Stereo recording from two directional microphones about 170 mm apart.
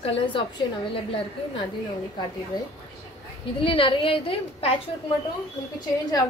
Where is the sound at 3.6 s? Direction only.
30° left (ahead or behind).